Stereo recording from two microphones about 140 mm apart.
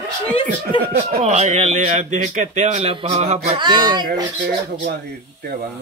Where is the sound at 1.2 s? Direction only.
55° right (ahead or behind); by 4.1 s 30° right (ahead or behind).